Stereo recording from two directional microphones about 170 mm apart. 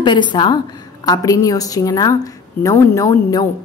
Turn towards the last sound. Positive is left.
turn(degrees=20)  # may be behind; listen again after turning